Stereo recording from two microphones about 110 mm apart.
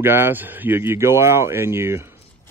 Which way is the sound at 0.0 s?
20° right (ahead or behind).